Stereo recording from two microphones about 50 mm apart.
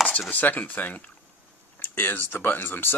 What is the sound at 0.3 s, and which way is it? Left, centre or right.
Chopping, left.